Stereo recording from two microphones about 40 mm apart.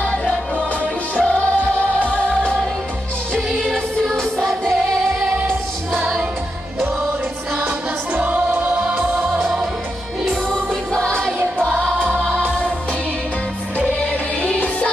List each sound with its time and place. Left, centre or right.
0.0 s music: left
4.1 s music: centre
8.1 s music: right
8.5 s choir: right
8.8 s music: centre
10.5 s music: centre
12.3 s music: left
13.7 s music: left